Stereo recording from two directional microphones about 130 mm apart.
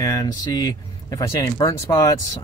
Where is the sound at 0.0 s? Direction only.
30° left (ahead or behind).